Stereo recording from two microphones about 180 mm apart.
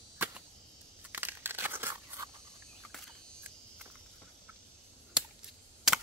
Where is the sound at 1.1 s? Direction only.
10° right (ahead or behind).